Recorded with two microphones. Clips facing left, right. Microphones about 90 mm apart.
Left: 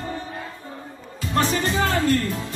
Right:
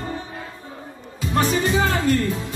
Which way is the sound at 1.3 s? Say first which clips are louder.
Right 2 dB; 15° right (ahead or behind).